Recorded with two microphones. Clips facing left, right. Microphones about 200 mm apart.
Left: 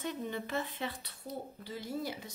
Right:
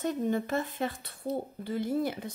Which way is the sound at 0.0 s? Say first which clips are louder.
Right 8 dB; 45° right (ahead or behind).